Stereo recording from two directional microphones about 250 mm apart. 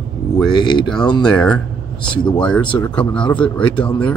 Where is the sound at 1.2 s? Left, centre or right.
Centre.